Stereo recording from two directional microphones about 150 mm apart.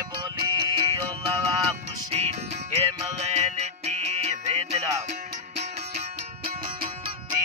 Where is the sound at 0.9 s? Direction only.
25° right (ahead or behind).